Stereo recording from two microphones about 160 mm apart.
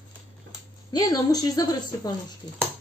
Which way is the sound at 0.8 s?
25° left (ahead or behind).